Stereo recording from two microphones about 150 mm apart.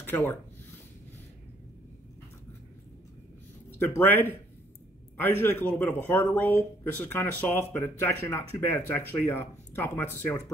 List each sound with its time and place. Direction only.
0.0 s speech: 15° left (ahead or behind)
3.7 s speech: 15° left (ahead or behind)